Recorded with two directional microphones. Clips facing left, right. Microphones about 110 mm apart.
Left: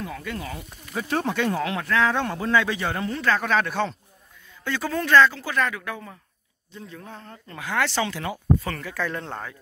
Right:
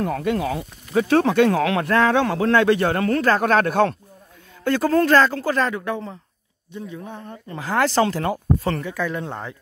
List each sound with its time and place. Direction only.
0.0 s speech: 65° right (ahead or behind); by 1.9 s 85° right
1.9 s a man's voice: 60° right (ahead or behind); by 5.6 s 40° right (ahead or behind)
5.6 s speech: 30° right (ahead or behind)
6.7 s speech: 15° right (ahead or behind)
7.5 s speech: 35° right (ahead or behind)
8.7 s speech: 20° right (ahead or behind)